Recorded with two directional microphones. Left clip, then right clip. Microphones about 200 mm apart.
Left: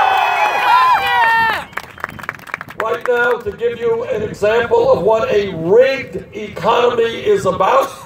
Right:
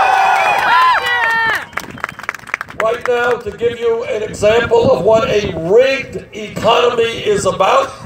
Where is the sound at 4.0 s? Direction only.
20° right (ahead or behind).